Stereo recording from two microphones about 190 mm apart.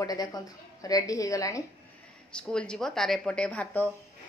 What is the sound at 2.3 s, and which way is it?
A woman's voice, 5° left (ahead or behind).